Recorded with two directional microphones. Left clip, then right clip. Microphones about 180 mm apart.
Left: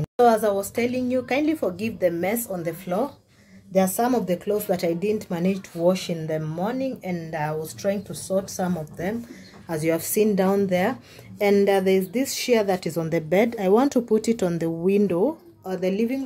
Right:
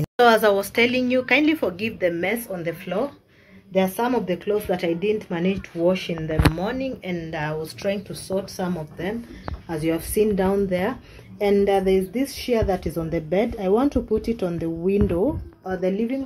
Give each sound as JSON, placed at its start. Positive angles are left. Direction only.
{"t": 0.0, "sound": "speech", "side_deg": 5}